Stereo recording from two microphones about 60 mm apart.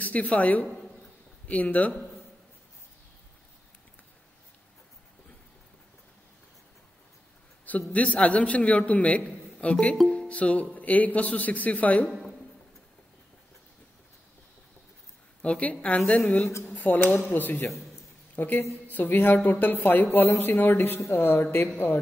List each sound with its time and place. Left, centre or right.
0.0 s a sound: left
0.3 s a man's voice: left
7.9 s a man's voice: left
15.4 s a man's voice: left